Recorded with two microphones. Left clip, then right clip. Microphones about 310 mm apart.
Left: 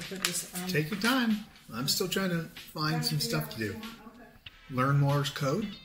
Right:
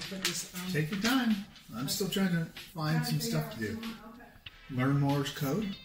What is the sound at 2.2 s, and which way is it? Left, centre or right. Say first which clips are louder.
Speech: left 2 dB; left.